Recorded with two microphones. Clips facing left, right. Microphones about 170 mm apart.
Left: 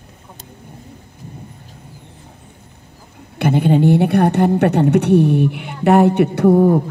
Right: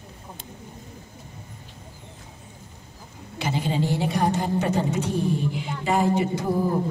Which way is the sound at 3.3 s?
60° left (ahead or behind).